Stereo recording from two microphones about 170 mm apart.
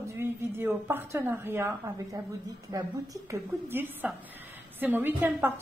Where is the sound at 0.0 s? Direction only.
15° right (ahead or behind).